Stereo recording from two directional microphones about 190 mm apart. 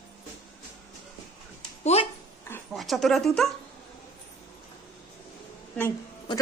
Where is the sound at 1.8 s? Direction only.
35° left (ahead or behind).